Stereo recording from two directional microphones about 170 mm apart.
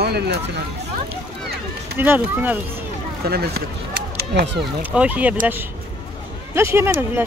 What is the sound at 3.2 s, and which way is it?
Speech, 65° right (ahead or behind).